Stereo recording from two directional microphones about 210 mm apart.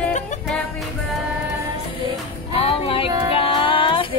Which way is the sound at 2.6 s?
25° left (ahead or behind).